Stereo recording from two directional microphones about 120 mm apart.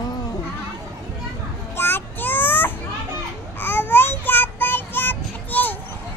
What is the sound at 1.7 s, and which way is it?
Child singing, 20° left (ahead or behind).